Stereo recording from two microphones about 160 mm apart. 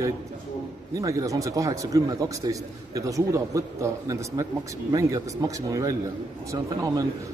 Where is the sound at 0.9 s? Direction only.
20° right (ahead or behind).